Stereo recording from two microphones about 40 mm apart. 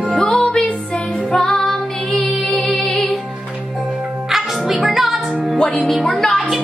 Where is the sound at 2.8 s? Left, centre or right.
Centre.